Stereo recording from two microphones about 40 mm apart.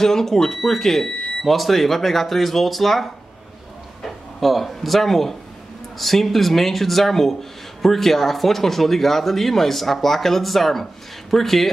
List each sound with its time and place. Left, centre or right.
0.0 s speech: centre